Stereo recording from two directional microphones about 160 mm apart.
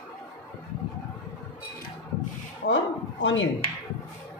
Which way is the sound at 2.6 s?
70° left (ahead or behind).